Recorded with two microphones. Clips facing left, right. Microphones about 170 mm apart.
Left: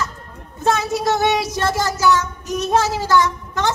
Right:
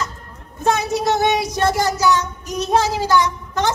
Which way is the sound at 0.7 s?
20° right (ahead or behind).